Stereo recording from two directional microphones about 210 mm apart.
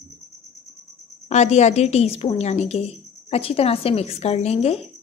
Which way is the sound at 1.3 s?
35° left (ahead or behind).